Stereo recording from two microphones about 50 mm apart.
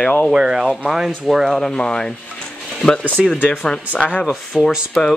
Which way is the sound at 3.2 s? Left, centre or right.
Centre.